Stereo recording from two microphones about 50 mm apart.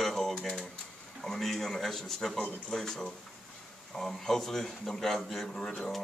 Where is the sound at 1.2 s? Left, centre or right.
Centre.